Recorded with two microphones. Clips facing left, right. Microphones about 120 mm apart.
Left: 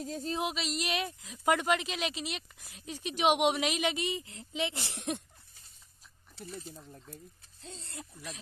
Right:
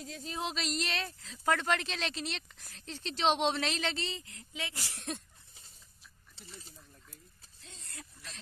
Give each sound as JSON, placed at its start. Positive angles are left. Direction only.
{"t": 0.0, "sound": "a sound", "side_deg": 40}
{"t": 0.4, "sound": "speech", "side_deg": 5}
{"t": 6.4, "sound": "speech", "side_deg": 60}
{"t": 7.6, "sound": "speech", "side_deg": 30}